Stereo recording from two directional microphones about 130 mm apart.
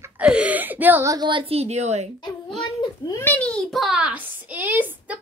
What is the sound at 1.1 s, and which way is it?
A woman's voice, 35° right (ahead or behind).